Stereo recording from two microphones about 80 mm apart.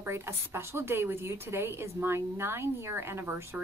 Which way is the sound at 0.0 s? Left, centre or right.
Right.